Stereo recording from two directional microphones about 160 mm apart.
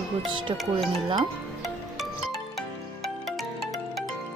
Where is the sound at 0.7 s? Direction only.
30° right (ahead or behind).